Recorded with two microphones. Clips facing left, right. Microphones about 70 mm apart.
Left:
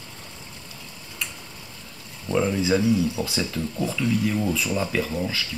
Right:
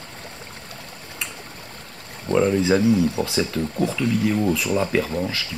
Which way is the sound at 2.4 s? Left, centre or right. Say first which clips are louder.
Right 4 dB; centre.